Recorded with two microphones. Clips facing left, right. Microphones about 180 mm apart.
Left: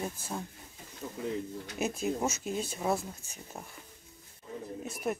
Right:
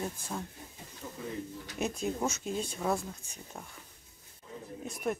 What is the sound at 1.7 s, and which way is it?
Speech, 5° left (ahead or behind).